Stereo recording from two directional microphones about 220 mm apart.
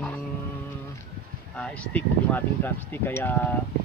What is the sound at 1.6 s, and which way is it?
Speech, 5° left (ahead or behind).